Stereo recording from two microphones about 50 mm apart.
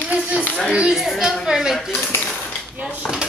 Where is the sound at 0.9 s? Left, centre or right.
Centre.